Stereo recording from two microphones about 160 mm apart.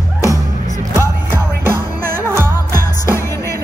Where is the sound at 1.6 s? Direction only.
15° right (ahead or behind).